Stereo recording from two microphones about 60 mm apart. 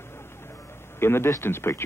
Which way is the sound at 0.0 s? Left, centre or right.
Left.